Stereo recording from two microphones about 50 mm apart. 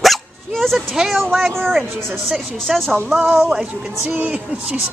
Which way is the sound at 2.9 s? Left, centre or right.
Centre.